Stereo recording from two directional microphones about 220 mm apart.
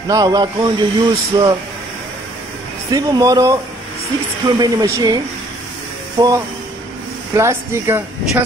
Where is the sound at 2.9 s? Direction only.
15° right (ahead or behind).